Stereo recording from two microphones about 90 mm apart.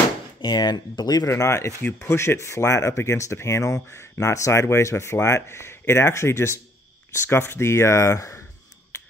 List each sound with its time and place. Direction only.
0.4 s speech: 50° left (ahead or behind)
1.3 s speech: 35° left (ahead or behind)